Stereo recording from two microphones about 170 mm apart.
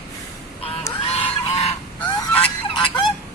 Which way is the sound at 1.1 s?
40° left (ahead or behind).